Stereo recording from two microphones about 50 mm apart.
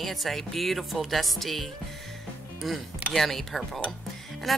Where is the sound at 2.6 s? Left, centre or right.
Centre.